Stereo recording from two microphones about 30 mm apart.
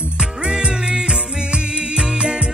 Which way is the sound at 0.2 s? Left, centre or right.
Right.